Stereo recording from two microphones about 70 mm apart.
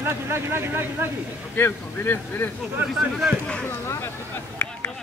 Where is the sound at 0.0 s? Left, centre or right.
Right.